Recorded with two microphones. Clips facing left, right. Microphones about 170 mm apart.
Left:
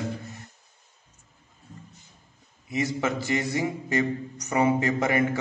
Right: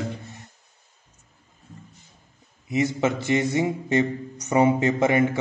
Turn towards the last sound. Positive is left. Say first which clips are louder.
# right 3 dB
turn(degrees=-20)  # may be behind; listen again after turning